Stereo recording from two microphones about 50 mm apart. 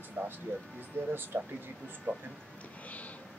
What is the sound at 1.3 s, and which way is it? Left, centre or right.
Speech, right.